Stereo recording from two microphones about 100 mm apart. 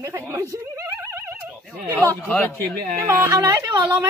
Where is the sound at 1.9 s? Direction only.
30° right (ahead or behind).